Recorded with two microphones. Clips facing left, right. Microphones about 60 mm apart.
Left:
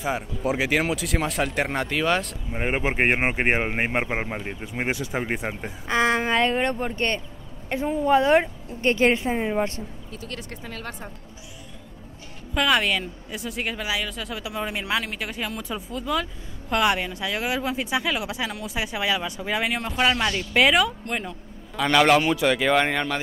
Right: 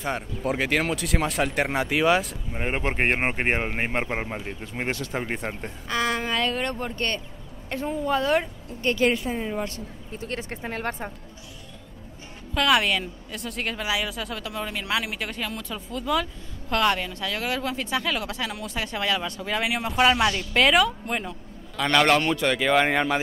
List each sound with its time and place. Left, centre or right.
0.0 s a man's voice: centre
2.5 s speech: centre
5.9 s speech: left
8.0 s speech: left
10.1 s speech: right
12.5 s a man's voice: centre
14.4 s speech: centre
15.0 s a man's voice: centre
18.5 s a man's voice: centre
19.6 s a man's voice: centre